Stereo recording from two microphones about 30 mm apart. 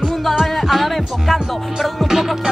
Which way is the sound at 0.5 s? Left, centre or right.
Centre.